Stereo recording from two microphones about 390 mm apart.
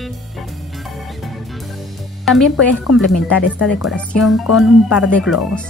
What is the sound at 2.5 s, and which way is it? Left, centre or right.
Speech, left.